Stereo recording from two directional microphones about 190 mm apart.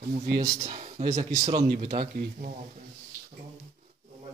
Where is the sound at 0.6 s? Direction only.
35° right (ahead or behind).